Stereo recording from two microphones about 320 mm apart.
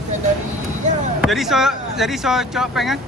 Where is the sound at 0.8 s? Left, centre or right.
Right.